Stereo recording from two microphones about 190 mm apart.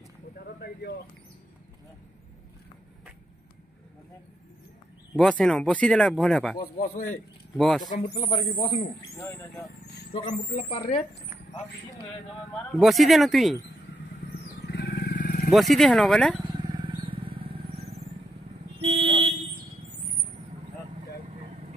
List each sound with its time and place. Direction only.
5.1 s speech: 5° left (ahead or behind)
6.8 s a man's voice: 45° left (ahead or behind)
7.5 s speech: centre (ahead or behind)
7.8 s a man's voice: 45° left (ahead or behind)
8.1 s speech: 25° left (ahead or behind)
10.7 s speech: 30° left (ahead or behind)
12.7 s speech: centre (ahead or behind)
14.7 s wild animals: 60° left (ahead or behind)
15.5 s speech: centre (ahead or behind)
16.4 s vehicle: 25° right (ahead or behind)
18.8 s vehicle: 30° right (ahead or behind)